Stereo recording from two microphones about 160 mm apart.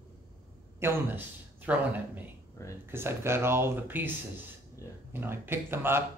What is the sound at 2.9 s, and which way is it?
Speech, 15° right (ahead or behind).